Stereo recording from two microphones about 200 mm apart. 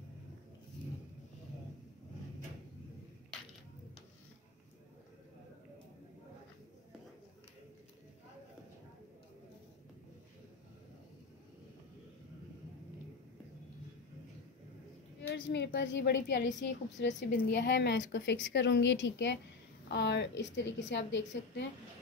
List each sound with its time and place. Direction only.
15.1 s a woman's voice: 60° left (ahead or behind)